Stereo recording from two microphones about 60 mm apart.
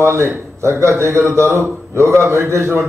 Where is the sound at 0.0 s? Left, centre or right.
Right.